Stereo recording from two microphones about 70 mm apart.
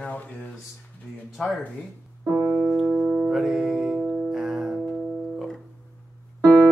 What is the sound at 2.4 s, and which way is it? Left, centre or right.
Keyboard, centre.